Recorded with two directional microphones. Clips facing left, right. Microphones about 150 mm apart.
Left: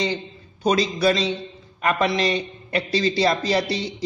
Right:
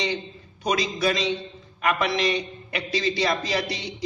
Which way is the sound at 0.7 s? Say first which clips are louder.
Left 5 dB; 30° left (ahead or behind).